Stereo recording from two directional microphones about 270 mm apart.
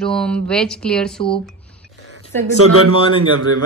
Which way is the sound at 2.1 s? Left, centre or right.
Right.